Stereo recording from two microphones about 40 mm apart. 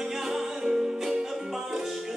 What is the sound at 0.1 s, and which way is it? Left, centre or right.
Music, centre.